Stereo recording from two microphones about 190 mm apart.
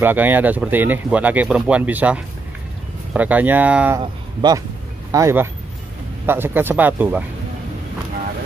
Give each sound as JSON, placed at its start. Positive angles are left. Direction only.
{"t": 0.0, "sound": "speech", "side_deg": -10}
{"t": 4.0, "sound": "speech", "side_deg": -20}